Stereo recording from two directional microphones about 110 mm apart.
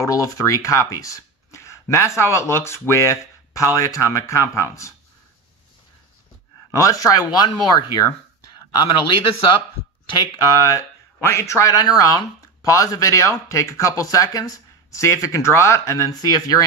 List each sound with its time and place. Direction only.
0.0 s speech: 30° left (ahead or behind)
6.7 s speech: 30° left (ahead or behind)